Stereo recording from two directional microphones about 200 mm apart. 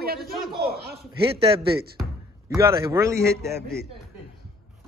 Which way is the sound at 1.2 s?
30° right (ahead or behind).